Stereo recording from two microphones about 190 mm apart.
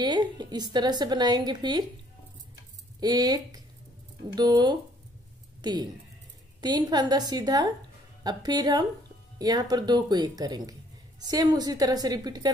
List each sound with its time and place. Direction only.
0.0 s speech: 20° right (ahead or behind)
3.0 s speech: 20° right (ahead or behind)